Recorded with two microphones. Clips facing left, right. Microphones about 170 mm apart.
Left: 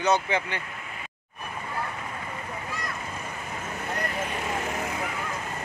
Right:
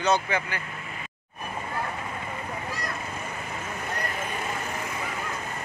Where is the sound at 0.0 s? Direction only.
20° left (ahead or behind).